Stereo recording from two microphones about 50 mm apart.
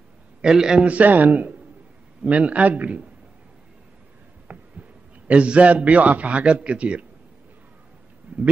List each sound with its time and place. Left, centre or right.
0.4 s a man's voice: centre
0.8 s a man's voice: right
4.5 s insect: right
5.3 s a man's voice: right
8.3 s a sound: right